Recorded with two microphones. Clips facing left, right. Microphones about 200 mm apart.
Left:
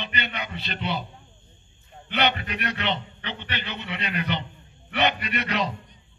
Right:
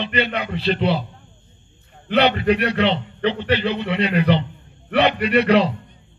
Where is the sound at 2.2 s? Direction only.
30° right (ahead or behind).